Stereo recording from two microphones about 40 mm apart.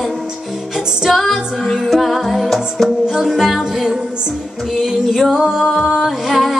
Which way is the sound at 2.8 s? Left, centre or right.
Centre.